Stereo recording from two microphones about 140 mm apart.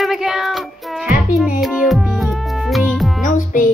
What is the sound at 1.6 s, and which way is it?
Music, 5° right (ahead or behind).